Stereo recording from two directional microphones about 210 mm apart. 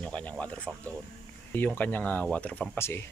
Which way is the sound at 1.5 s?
10° left (ahead or behind).